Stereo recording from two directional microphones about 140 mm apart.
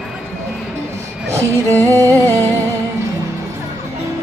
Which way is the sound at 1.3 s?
20° right (ahead or behind).